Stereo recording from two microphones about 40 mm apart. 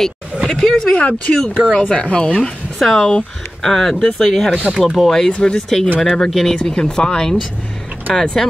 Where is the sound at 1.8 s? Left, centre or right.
Left.